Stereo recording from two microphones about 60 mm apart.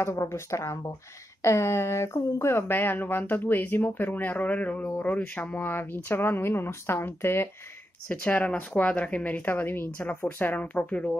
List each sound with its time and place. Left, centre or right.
0.0 s speech: left
5.7 s speech: left
8.1 s speech: left
9.5 s speech: left